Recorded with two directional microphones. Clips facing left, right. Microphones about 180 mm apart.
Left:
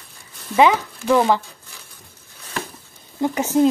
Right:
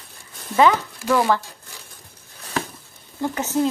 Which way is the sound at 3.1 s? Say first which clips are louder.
Left 4 dB; 15° left (ahead or behind).